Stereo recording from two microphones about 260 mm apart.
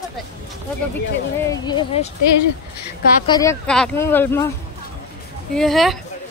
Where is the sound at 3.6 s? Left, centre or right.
Centre.